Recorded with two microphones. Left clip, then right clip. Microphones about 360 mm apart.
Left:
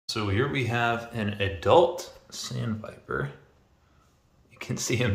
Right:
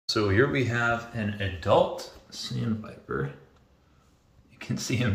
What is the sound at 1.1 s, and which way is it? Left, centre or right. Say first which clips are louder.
Speech: left 3 dB; centre.